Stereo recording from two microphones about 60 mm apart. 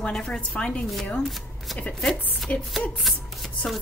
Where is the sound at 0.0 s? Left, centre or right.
Centre.